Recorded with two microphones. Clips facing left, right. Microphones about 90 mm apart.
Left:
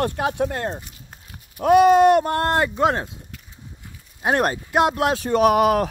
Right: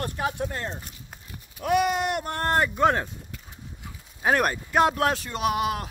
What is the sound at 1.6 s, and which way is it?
Speech, 35° left (ahead or behind).